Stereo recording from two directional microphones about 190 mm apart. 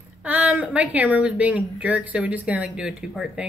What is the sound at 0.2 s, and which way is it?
Speech, 10° right (ahead or behind).